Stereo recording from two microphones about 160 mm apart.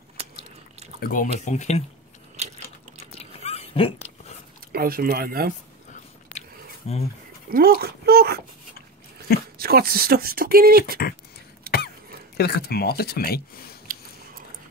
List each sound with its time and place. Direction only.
0.9 s speech: 65° left (ahead or behind); by 1.9 s 45° left (ahead or behind)
3.2 s dog: 40° left (ahead or behind)
4.7 s speech: 65° right (ahead or behind)
6.8 s speech: 40° left (ahead or behind)
7.4 s speech: 70° right (ahead or behind)
9.6 s speech: 70° right (ahead or behind)
12.4 s speech: 75° left (ahead or behind)